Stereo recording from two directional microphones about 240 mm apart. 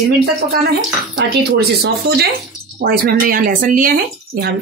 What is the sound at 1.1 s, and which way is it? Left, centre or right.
Speech, right.